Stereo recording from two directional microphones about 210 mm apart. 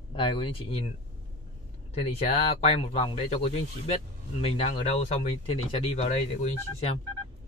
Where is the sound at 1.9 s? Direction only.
30° left (ahead or behind).